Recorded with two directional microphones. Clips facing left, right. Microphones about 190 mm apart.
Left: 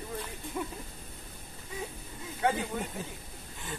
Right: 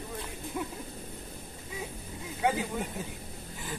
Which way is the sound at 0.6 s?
5° right (ahead or behind).